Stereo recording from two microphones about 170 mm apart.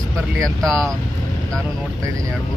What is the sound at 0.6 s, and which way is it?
Speech, 5° left (ahead or behind).